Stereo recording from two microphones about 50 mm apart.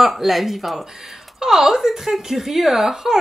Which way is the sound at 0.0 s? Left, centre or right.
Centre.